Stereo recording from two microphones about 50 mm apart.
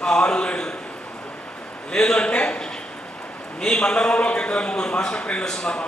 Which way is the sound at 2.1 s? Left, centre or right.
Centre.